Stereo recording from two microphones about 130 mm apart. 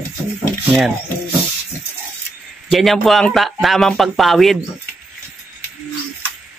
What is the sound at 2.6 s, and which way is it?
Speech, centre (ahead or behind).